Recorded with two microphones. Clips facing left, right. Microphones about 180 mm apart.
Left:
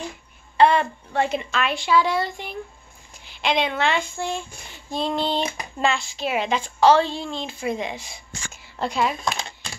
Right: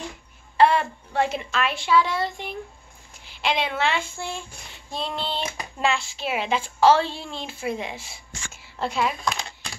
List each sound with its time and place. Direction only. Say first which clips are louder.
0.6 s a woman's voice: left 1 dB; 5° right (ahead or behind)
5.0 s a sound: left 6 dB; 40° left (ahead or behind)
5.8 s a woman's voice: left 1 dB; 5° right (ahead or behind)
9.2 s coin: left 1 dB; 25° left (ahead or behind)